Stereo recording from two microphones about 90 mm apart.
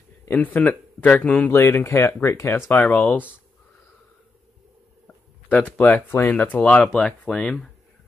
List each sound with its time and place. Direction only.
0.2 s a man's voice: 20° left (ahead or behind)
1.5 s speech: 25° left (ahead or behind)
2.7 s speech: 20° left (ahead or behind)
5.0 s speech: 15° left (ahead or behind)